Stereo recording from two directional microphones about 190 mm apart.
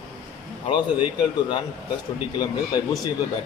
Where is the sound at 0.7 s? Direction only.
25° left (ahead or behind).